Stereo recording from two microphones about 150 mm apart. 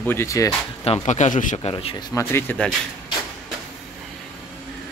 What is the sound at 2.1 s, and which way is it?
Speech, 15° left (ahead or behind).